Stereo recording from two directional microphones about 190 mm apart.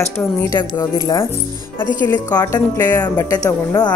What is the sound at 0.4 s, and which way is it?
A woman's voice, 20° left (ahead or behind).